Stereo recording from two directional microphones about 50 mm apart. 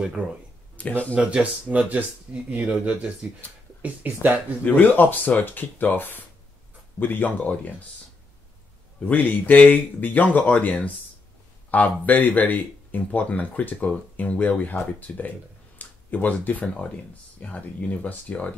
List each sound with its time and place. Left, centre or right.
0.7 s speech: left
1.1 s speech: right
4.6 s speech: left
9.0 s speech: left
16.8 s speech: left